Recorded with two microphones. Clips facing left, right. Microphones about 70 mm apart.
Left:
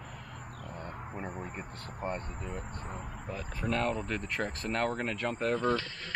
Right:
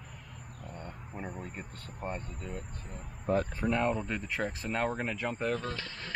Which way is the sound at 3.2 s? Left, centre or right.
Right.